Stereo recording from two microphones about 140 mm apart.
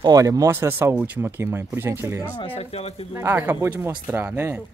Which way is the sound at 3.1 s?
15° right (ahead or behind).